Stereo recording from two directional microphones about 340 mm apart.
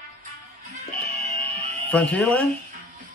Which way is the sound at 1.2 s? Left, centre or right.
Centre.